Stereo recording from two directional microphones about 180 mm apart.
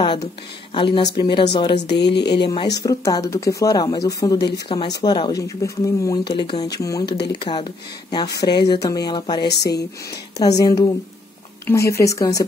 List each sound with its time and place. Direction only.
0.0 s speech: 30° left (ahead or behind)
1.8 s speech: 70° left (ahead or behind)
2.2 s speech: 25° left (ahead or behind)
9.5 s speech: 65° left (ahead or behind)
10.4 s speech: 20° left (ahead or behind)